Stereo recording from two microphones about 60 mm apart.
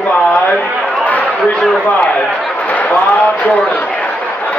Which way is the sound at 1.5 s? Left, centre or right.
Centre.